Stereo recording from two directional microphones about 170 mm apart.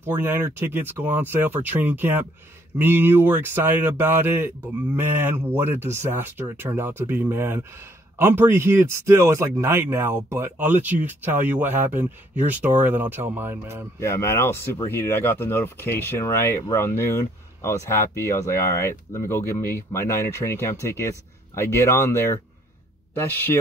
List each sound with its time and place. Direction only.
0.0 s speech: 15° right (ahead or behind)
13.9 s speech: 15° left (ahead or behind)